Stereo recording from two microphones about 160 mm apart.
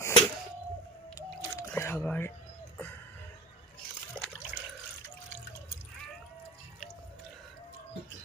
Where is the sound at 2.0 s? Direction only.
10° left (ahead or behind).